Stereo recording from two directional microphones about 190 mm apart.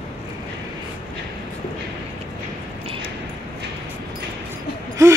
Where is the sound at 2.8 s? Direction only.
30° right (ahead or behind).